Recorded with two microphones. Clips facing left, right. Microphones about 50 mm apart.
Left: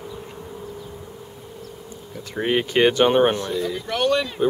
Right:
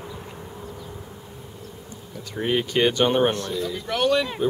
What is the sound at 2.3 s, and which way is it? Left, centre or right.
Speech, centre.